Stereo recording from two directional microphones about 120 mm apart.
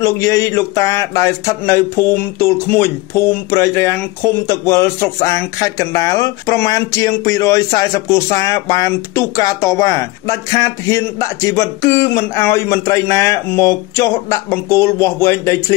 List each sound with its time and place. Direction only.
0.0 s speech: 25° left (ahead or behind)